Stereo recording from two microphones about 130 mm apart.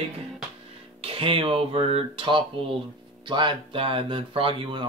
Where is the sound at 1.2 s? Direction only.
45° right (ahead or behind).